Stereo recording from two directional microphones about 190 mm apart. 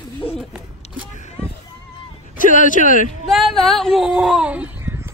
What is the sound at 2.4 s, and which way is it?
Speech, 45° left (ahead or behind).